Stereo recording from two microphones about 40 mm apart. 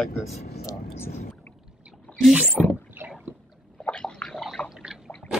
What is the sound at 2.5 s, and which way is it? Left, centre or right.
Speech, left.